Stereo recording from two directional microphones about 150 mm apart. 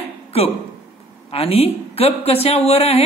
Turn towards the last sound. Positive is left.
turn(degrees=45)  # may be behind; listen again after turning